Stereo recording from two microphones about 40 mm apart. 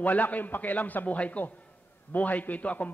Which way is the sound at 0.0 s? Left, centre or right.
Left.